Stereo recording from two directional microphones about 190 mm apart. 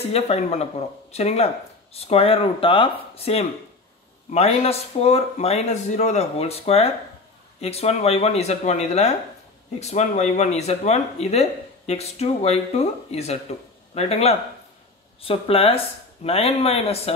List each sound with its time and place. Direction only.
0.0 s speech: 35° left (ahead or behind)